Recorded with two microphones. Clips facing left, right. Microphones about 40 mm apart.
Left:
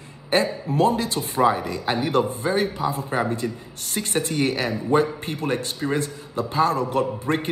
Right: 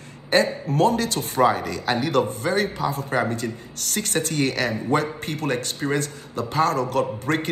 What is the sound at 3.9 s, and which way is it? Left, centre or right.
Speech, left.